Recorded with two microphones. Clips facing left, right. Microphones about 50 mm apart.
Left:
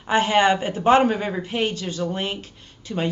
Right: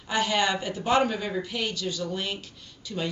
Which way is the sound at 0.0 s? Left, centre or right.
Left.